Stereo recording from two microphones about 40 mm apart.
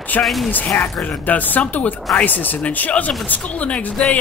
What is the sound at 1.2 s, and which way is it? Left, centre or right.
Speech, left.